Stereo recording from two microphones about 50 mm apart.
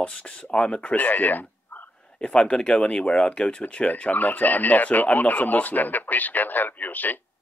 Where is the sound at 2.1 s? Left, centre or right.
Centre; by 7.2 s left.